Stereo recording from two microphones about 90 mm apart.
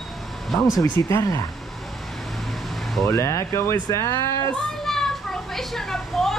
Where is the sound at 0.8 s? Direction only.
35° left (ahead or behind).